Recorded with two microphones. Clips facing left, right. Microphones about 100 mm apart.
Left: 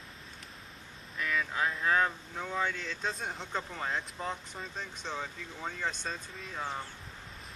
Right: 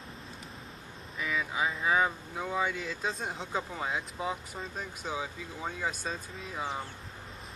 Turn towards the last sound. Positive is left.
turn(degrees=-5)  # may be behind; listen again after turning